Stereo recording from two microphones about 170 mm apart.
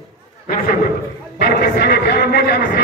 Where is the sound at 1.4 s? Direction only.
70° left (ahead or behind).